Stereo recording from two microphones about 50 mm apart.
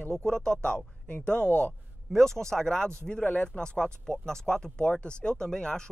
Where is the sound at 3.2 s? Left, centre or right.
Left.